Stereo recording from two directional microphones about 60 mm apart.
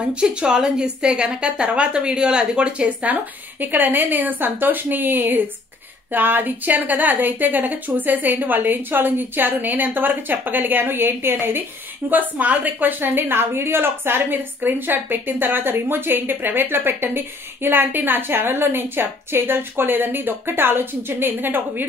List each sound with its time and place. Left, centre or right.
0.1 s a woman's voice: centre
3.6 s a woman's voice: right
12.1 s a woman's voice: right